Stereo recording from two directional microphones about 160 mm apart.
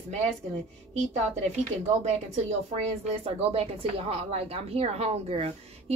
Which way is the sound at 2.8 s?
40° right (ahead or behind).